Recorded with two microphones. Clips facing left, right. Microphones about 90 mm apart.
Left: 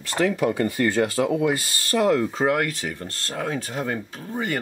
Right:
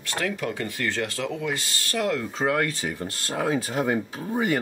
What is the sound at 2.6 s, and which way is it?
Speech, 5° right (ahead or behind).